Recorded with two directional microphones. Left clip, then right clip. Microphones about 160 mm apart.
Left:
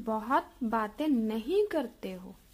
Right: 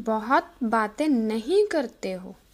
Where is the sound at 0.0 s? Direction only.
15° right (ahead or behind).